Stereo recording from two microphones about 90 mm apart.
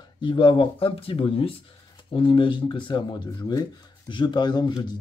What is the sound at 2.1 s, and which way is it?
Speech, 75° left (ahead or behind).